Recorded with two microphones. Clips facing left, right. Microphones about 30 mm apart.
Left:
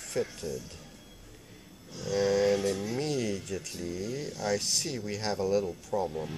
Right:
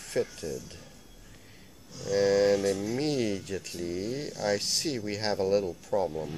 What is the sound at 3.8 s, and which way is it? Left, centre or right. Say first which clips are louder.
Speech: right 3 dB; right.